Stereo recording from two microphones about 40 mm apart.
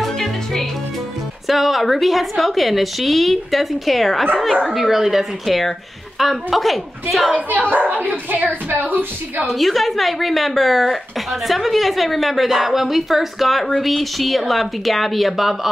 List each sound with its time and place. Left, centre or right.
0.0 s music: centre
1.5 s a woman's voice: centre
7.4 s speech: right
9.5 s a woman's voice: centre